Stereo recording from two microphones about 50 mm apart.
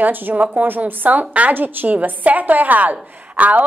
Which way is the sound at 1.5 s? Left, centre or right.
Right.